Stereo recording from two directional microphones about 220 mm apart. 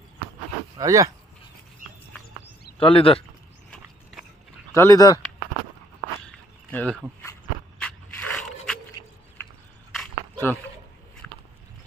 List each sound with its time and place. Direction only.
0.7 s speech: 15° right (ahead or behind)
2.8 s speech: 25° left (ahead or behind)
4.7 s speech: 15° left (ahead or behind)
6.2 s walk: 5° left (ahead or behind)
7.8 s scrape: 5° left (ahead or behind)
11.2 s a sound: 5° left (ahead or behind)